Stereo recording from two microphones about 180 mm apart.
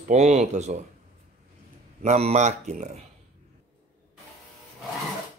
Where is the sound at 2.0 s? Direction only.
40° right (ahead or behind).